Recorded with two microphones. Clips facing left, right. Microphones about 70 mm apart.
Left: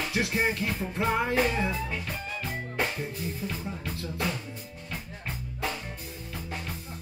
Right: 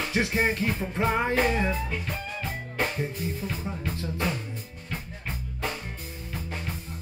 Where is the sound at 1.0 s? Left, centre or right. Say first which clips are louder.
Right 1 dB; right.